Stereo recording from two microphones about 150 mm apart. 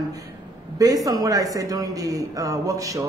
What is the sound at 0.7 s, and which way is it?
A man's voice, 25° right (ahead or behind).